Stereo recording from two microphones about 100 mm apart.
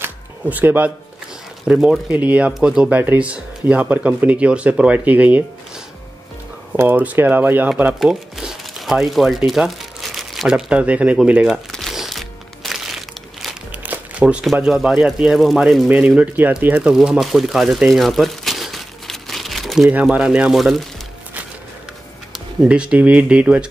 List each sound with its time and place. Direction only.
0.0 s music: 20° right (ahead or behind)
1.7 s speech: 10° right (ahead or behind)
6.8 s speech: 15° right (ahead or behind)
7.7 s speech: 5° right (ahead or behind)
11.7 s music: centre (ahead or behind)
13.7 s crumpling: 15° right (ahead or behind)
14.4 s speech: centre (ahead or behind)
15.9 s speech: 15° right (ahead or behind)
19.9 s speech: 10° right (ahead or behind)
22.7 s speech: 10° right (ahead or behind)